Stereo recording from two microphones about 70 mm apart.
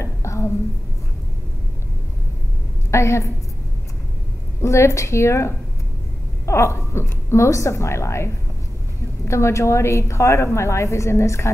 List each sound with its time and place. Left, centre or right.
0.0 s a sound: left
2.9 s a woman's voice: left
4.6 s a woman's voice: left